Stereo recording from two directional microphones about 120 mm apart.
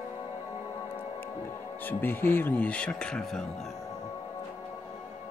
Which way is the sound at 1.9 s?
20° left (ahead or behind).